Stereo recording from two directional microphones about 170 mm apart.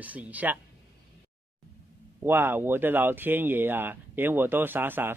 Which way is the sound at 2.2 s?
10° right (ahead or behind).